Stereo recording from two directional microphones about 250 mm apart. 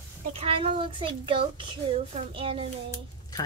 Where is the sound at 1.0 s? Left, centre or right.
Centre.